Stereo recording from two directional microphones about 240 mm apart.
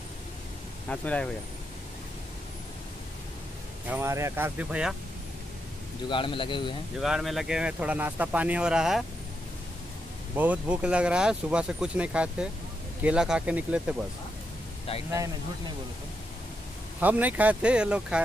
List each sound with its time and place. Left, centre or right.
0.8 s speech: centre
3.9 s speech: centre
6.0 s a man's voice: left
7.0 s speech: centre
10.3 s speech: centre
14.9 s a man's voice: left
17.0 s speech: centre